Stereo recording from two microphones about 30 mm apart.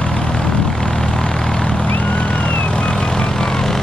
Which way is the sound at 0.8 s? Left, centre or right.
Centre.